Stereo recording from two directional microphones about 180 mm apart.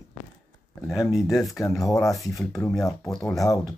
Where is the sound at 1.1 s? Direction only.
Centre (ahead or behind).